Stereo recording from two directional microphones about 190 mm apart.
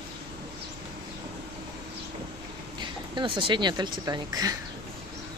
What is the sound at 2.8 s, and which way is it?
Speech, 25° right (ahead or behind).